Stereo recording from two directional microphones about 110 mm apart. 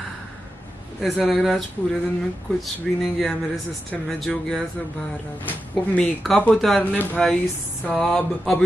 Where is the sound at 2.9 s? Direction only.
5° left (ahead or behind).